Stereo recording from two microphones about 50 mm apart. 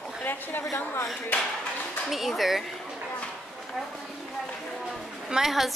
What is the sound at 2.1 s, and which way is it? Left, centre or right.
Speech, centre.